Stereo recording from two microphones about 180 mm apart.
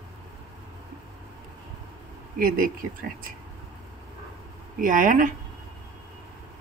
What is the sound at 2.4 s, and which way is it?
Speech, 50° right (ahead or behind).